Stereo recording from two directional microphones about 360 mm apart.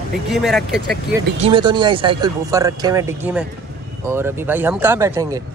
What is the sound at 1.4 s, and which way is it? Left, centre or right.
Speech, centre.